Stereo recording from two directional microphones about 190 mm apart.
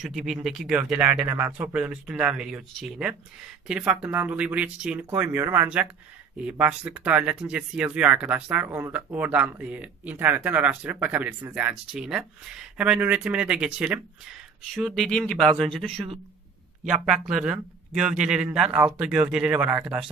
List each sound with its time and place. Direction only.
0.0 s speech: centre (ahead or behind)